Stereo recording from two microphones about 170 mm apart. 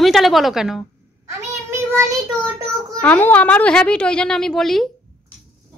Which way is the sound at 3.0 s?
10° left (ahead or behind).